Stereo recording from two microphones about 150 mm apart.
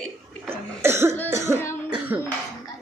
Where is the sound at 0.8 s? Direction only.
15° right (ahead or behind).